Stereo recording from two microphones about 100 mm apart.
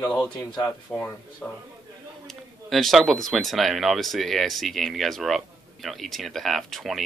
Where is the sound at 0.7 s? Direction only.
20° left (ahead or behind).